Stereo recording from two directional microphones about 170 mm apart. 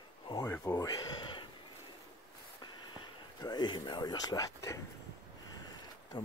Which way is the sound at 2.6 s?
25° left (ahead or behind).